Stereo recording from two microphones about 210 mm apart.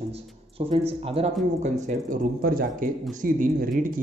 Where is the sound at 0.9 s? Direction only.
25° right (ahead or behind).